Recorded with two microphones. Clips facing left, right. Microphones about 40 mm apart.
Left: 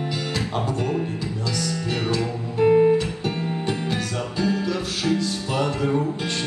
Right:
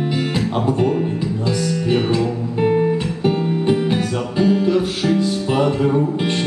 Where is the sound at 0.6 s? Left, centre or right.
Right.